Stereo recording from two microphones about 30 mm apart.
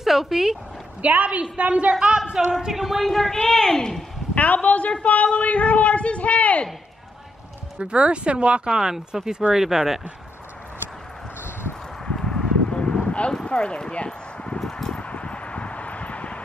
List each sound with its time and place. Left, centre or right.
0.0 s speech: centre
1.0 s a woman's voice: right
2.0 s speech: right
2.7 s a woman's voice: centre
4.6 s a man's voice: left
7.8 s speech: right
8.6 s speech: right
12.1 s a sound: centre
12.6 s a sound: left
13.5 s clip-clop: left
14.6 s a sound: centre
15.0 s a sound: left